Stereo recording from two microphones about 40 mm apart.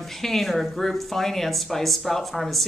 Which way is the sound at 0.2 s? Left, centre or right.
Centre.